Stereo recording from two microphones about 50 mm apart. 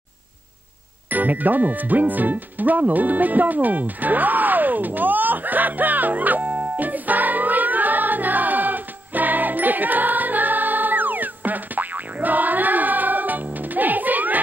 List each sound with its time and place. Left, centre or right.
1.1 s music: right